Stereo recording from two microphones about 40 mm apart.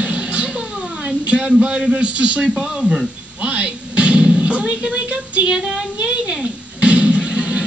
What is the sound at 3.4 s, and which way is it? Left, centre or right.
Music, right.